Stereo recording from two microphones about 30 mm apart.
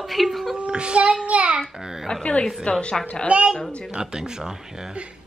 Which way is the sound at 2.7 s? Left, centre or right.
Left.